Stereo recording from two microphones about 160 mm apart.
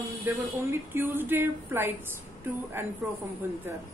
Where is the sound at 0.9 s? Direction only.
10° right (ahead or behind).